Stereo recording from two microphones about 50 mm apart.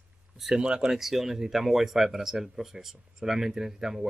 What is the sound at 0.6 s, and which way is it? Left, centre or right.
Speech, centre.